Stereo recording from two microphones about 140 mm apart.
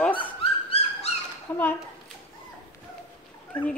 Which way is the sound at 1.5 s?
10° left (ahead or behind).